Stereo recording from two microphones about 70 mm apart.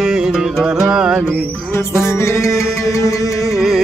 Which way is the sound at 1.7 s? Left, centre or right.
Left.